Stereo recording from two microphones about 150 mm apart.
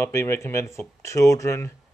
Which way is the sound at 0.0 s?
15° left (ahead or behind).